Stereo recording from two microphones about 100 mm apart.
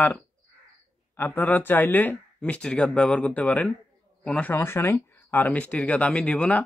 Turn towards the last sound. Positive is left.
turn(degrees=15)  # may be behind; listen again after turning